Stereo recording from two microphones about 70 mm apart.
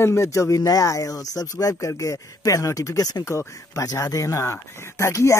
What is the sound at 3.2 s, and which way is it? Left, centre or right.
Speech, left.